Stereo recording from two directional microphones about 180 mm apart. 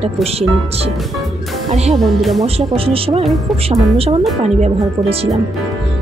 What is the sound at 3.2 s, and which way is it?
Speech, centre (ahead or behind).